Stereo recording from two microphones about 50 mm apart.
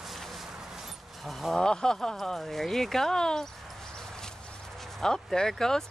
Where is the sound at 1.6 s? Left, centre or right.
Centre.